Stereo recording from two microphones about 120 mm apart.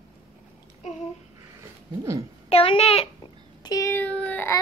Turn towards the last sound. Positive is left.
turn(degrees=15)  # may be behind; listen again after turning